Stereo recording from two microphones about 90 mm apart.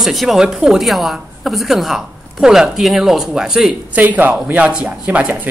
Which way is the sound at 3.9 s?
20° right (ahead or behind).